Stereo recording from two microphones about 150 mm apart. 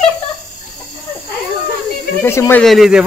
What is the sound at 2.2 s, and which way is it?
Speech, 15° left (ahead or behind).